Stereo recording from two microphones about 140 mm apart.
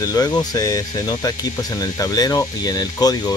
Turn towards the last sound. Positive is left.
turn(degrees=25)  # may be behind; listen again after turning